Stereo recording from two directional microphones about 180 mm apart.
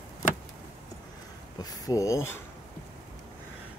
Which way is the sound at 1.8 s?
20° left (ahead or behind).